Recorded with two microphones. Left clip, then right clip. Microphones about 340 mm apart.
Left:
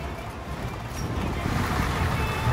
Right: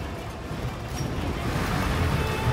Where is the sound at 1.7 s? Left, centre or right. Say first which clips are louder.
Even; centre.